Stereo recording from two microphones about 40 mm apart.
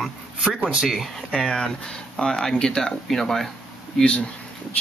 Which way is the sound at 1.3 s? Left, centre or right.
Centre.